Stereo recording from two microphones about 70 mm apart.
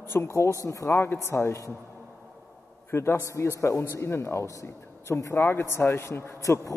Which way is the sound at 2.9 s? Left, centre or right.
Left.